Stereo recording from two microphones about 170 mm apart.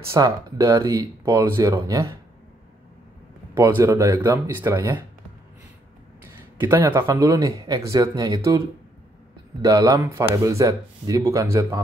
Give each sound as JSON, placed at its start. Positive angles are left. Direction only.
{"t": 0.0, "sound": "speech", "side_deg": -20}
{"t": 3.5, "sound": "speech", "side_deg": -15}
{"t": 6.6, "sound": "speech", "side_deg": -10}